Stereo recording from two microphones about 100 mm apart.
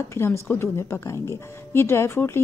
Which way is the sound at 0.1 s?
25° left (ahead or behind).